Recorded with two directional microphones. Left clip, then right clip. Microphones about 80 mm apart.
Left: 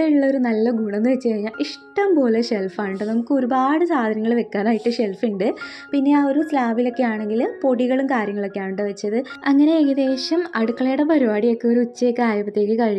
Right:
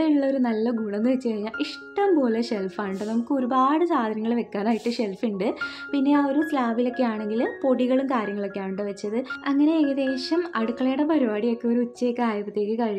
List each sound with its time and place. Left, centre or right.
0.0 s speech: left
9.5 s speech: left